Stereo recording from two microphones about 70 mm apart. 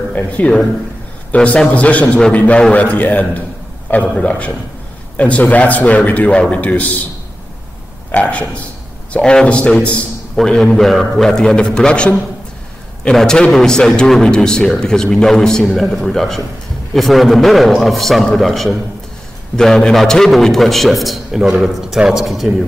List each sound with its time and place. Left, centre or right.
0.1 s a man's voice: centre
8.1 s a man's voice: centre